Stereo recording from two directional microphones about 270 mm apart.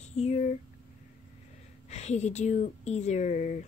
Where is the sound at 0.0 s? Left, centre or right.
Left.